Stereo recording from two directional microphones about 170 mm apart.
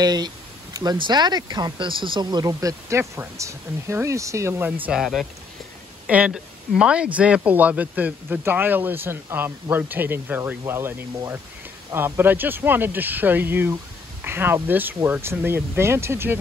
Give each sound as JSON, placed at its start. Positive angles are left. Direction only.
{"t": 0.0, "sound": "speech", "side_deg": -25}
{"t": 4.8, "sound": "speech", "side_deg": 0}